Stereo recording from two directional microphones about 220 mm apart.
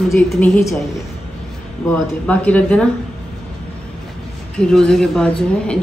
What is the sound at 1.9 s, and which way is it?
Speech, 5° left (ahead or behind).